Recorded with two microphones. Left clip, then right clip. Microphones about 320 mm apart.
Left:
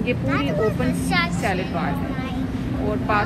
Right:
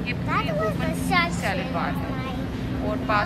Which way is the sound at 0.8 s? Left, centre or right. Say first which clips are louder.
Left 1 dB; right.